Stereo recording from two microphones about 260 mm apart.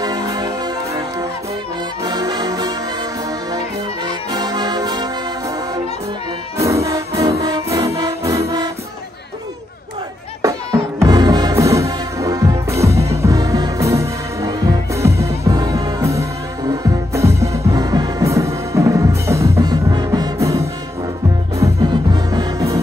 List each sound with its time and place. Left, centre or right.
0.0 s music: centre
2.0 s brass instrument: centre
4.3 s music: centre
6.6 s music: centre
10.4 s music: centre